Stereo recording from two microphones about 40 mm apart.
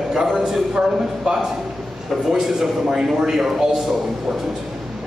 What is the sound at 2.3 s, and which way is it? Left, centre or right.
A man's voice, centre.